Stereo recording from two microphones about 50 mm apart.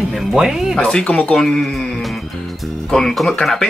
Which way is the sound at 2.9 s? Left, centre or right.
Centre.